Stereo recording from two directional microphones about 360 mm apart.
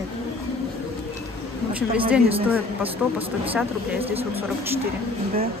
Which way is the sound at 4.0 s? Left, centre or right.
Centre.